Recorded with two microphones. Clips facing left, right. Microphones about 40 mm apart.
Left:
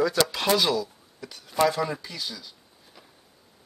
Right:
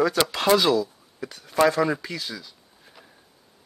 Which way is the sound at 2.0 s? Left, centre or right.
Right.